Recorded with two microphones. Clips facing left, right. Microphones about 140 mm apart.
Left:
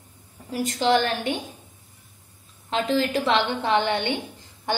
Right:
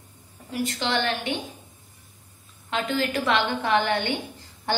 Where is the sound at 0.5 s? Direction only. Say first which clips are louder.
Left 6 dB; 40° left (ahead or behind).